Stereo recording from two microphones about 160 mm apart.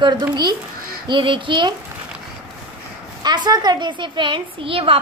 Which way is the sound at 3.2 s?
25° right (ahead or behind).